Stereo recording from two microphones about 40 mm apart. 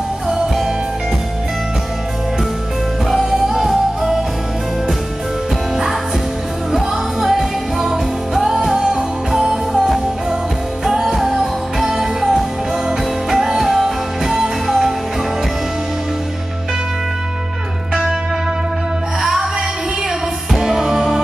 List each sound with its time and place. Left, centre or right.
0.3 s music: centre
3.1 s music: centre
6.7 s music: centre
10.9 s music: centre
13.6 s music: centre
20.5 s music: centre